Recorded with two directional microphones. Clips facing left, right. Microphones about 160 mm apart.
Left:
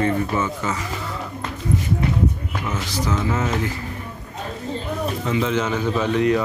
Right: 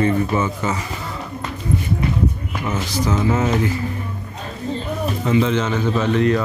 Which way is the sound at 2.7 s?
20° right (ahead or behind).